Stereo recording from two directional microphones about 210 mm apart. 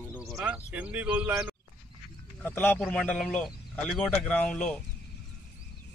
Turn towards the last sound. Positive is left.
turn(degrees=5)  # may be behind; listen again after turning